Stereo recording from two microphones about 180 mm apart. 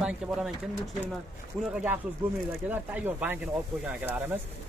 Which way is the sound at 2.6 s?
10° right (ahead or behind).